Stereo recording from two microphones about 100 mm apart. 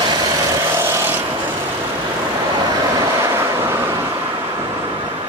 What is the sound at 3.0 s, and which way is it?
Vehicle, 30° right (ahead or behind).